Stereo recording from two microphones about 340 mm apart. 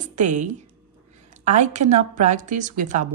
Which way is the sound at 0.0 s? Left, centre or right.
Right.